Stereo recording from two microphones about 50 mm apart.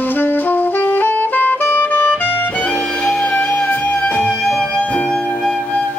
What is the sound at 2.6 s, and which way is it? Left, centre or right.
Music, left.